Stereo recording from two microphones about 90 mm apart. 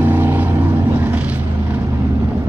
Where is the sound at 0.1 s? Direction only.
20° right (ahead or behind).